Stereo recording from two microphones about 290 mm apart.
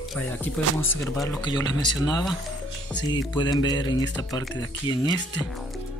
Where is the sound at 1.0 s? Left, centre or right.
Centre.